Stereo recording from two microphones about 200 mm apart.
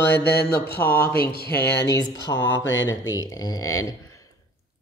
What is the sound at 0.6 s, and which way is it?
Speech, 10° left (ahead or behind).